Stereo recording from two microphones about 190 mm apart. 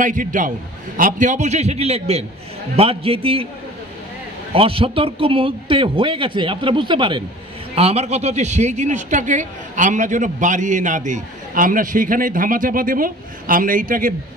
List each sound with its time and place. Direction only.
0.0 s a man's voice: 45° right (ahead or behind)
4.6 s speech: 30° right (ahead or behind); by 14.1 s 45° right (ahead or behind)